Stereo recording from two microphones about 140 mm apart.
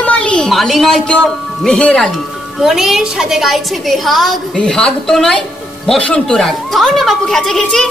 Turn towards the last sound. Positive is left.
turn(degrees=5)  # may be behind; listen again after turning